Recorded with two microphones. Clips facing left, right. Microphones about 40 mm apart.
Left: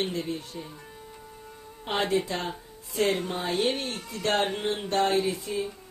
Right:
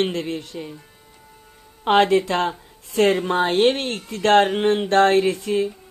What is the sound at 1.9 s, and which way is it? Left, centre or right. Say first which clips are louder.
A woman's voice: right 10 dB; right.